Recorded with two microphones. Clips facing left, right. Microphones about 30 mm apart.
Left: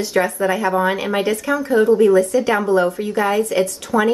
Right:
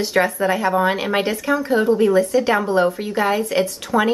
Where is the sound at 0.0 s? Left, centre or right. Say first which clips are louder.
Even; centre.